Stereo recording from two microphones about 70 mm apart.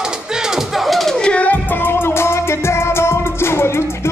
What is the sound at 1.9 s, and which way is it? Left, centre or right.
Music, left.